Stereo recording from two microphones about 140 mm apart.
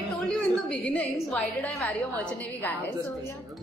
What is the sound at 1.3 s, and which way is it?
A woman's voice, 5° left (ahead or behind).